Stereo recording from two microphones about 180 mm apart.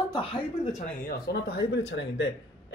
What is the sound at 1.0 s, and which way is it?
Speech, 70° left (ahead or behind).